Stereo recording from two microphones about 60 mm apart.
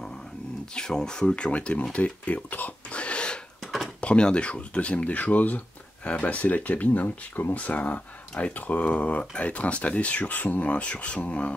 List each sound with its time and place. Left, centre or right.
0.7 s speech: centre
3.6 s a sound: centre
4.0 s speech: centre